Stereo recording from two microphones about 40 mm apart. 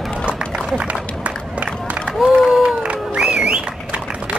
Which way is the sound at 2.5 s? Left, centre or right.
Centre.